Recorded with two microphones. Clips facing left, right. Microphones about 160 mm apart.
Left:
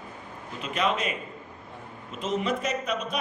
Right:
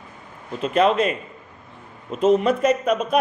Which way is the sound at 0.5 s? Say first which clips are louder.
Right 9 dB; 40° right (ahead or behind).